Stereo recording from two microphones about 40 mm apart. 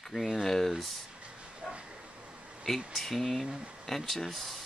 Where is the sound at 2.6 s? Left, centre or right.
Centre.